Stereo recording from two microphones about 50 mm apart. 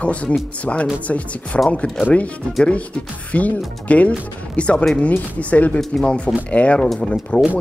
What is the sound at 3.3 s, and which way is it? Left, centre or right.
Speech, left.